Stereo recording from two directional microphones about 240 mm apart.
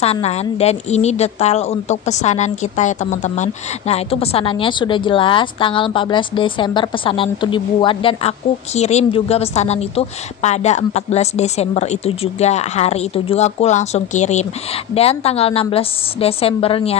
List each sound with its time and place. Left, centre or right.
0.0 s a woman's voice: left